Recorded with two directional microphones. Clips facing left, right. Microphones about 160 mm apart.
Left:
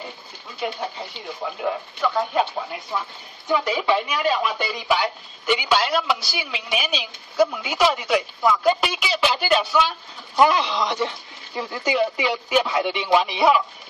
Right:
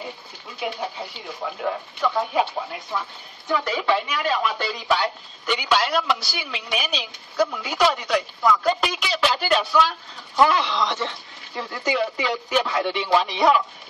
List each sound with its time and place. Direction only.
0.6 s speech: centre (ahead or behind)
4.3 s speech: 15° left (ahead or behind)
10.3 s speech: 20° left (ahead or behind)